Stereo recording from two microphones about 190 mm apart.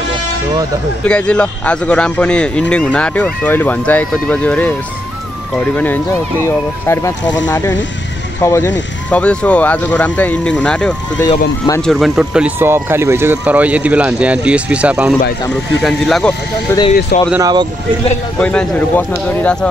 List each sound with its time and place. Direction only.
1.0 s speech: 5° left (ahead or behind)
11.1 s speech: 20° left (ahead or behind)
11.8 s speech: centre (ahead or behind)
17.3 s speech: 20° right (ahead or behind)
18.4 s speech: 5° left (ahead or behind)